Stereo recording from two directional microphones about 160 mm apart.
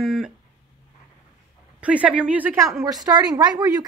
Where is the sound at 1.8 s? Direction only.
10° right (ahead or behind).